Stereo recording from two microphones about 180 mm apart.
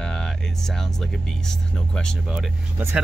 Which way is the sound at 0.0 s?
5° left (ahead or behind).